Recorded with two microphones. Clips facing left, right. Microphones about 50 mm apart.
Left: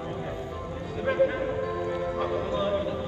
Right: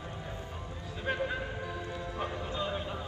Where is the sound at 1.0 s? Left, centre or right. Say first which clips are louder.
Left 9 dB; left.